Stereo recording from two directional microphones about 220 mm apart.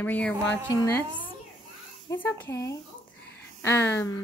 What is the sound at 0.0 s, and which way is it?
Speech, 5° left (ahead or behind).